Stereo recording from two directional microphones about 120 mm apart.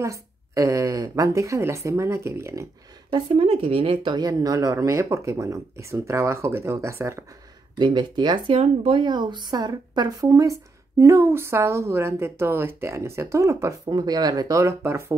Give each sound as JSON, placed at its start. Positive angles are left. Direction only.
{"t": 0.0, "sound": "speech", "side_deg": -25}
{"t": 3.1, "sound": "speech", "side_deg": -45}
{"t": 7.8, "sound": "speech", "side_deg": -40}
{"t": 8.5, "sound": "speech", "side_deg": -45}